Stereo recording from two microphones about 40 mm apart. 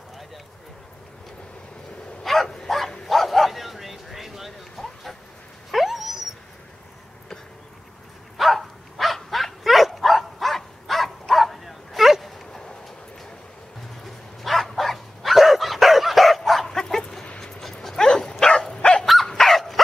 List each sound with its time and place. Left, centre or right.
2.2 s bow-wow: centre
5.7 s dog: centre
8.4 s dog: centre
14.0 s dog: centre
18.8 s dog: left
19.2 s dog: centre